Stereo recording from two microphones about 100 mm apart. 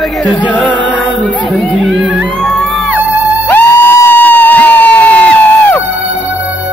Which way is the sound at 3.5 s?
20° left (ahead or behind).